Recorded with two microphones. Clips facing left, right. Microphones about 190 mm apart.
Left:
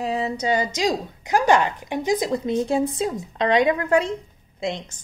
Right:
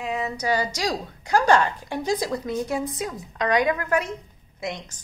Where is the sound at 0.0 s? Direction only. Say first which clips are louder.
Left 3 dB; 30° left (ahead or behind).